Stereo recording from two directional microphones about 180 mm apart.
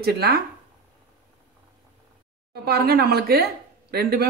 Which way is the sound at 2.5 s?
60° right (ahead or behind).